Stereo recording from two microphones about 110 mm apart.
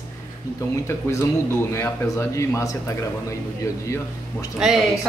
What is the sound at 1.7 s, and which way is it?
A man's voice, 25° left (ahead or behind).